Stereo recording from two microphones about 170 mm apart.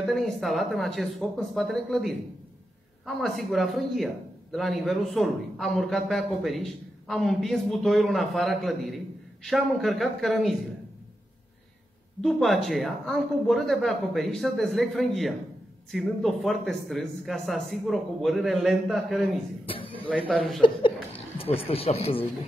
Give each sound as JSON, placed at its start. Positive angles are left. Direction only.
{"t": 0.0, "sound": "a man's voice", "side_deg": 0}
{"t": 12.2, "sound": "a man's voice", "side_deg": 0}
{"t": 19.7, "sound": "a sound", "side_deg": 30}
{"t": 20.2, "sound": "a man's voice", "side_deg": 0}
{"t": 21.4, "sound": "speech", "side_deg": 35}